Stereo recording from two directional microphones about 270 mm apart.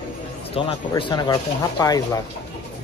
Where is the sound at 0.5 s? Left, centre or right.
Centre.